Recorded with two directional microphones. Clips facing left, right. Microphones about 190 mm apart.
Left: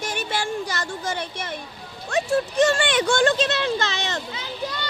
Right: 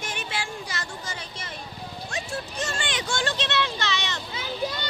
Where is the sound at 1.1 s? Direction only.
60° left (ahead or behind).